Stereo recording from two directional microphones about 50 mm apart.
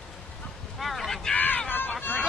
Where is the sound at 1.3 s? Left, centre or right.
Left.